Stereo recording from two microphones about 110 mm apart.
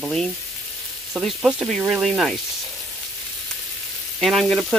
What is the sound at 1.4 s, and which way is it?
Sizzle, centre (ahead or behind).